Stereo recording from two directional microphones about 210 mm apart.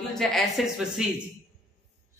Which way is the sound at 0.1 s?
Centre (ahead or behind).